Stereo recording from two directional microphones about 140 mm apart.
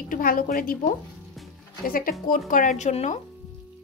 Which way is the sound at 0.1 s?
85° left.